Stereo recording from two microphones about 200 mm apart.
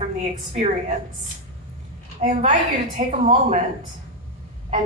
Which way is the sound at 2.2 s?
40° right (ahead or behind).